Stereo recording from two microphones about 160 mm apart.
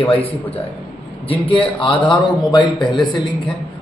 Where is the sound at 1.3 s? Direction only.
30° left (ahead or behind).